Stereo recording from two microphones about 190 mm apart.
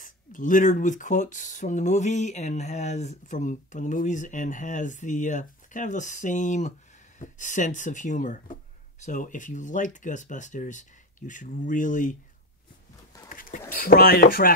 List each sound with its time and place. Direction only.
0.0 s speech: 45° left (ahead or behind)
13.3 s a sound: 45° left (ahead or behind)
13.7 s speech: 50° left (ahead or behind)